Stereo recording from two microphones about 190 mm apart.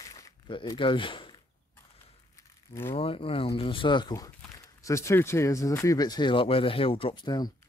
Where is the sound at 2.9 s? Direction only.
30° left (ahead or behind).